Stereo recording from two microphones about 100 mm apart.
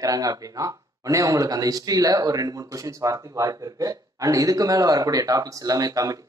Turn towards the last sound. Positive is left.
turn(degrees=-35)  # may be behind; listen again after turning